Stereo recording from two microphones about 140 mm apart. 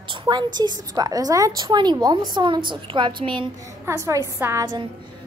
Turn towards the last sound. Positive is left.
turn(degrees=-20)  # may be behind; listen again after turning